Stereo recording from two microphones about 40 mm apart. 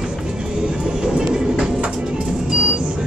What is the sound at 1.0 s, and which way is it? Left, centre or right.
Music, centre.